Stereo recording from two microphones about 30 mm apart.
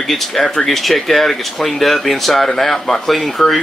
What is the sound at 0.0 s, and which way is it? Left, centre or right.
Speech, centre.